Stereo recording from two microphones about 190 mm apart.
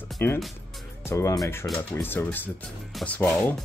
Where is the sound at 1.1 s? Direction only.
15° left (ahead or behind).